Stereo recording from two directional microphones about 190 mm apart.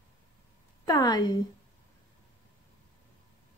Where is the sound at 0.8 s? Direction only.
20° left (ahead or behind).